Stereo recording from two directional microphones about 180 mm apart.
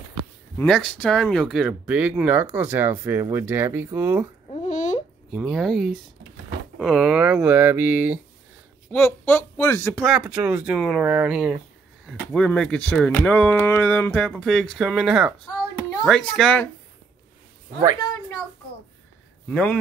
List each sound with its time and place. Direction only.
0.7 s speech: 5° left (ahead or behind)
4.6 s babbling: 40° left (ahead or behind)
5.3 s speech: 5° right (ahead or behind)
8.9 s speech: 10° left (ahead or behind)
9.9 s speech: centre (ahead or behind)
17.9 s a sound: 20° left (ahead or behind)
19.5 s speech: 10° left (ahead or behind)